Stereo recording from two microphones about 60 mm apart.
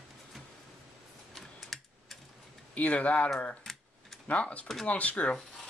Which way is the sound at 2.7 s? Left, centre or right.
Left.